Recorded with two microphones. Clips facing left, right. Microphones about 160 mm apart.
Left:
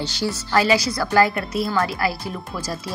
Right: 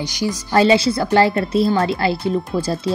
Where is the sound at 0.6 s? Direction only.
25° right (ahead or behind).